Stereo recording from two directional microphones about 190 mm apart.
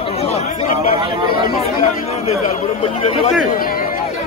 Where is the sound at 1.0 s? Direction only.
25° right (ahead or behind).